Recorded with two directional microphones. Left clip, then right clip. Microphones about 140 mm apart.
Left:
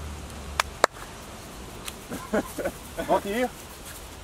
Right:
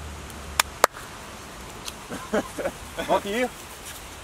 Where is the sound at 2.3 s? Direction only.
15° right (ahead or behind).